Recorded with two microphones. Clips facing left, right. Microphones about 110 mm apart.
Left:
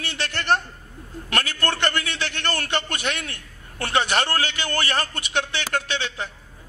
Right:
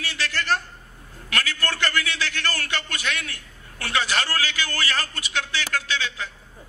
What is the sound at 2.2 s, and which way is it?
A man's voice, 25° left (ahead or behind).